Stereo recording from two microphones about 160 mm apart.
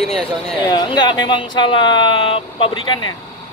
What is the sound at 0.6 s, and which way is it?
Speech, 25° left (ahead or behind).